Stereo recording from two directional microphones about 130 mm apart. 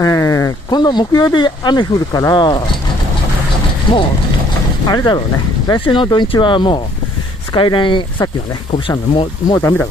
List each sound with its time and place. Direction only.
0.0 s speech: 25° left (ahead or behind)
4.8 s speech: 35° left (ahead or behind)
9.6 s speech: 15° left (ahead or behind)